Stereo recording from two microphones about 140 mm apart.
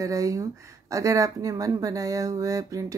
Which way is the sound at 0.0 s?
25° right (ahead or behind).